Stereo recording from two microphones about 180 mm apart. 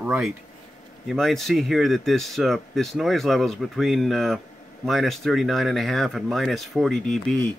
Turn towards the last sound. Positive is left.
turn(degrees=5)  # may be behind; listen again after turning